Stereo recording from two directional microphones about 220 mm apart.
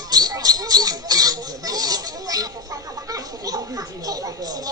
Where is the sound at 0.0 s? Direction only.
15° right (ahead or behind).